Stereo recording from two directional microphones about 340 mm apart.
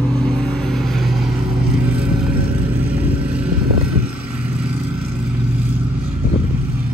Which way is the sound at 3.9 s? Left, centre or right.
Right.